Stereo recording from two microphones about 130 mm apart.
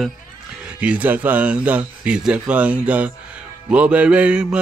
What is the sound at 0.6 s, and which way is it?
Speech, 10° right (ahead or behind).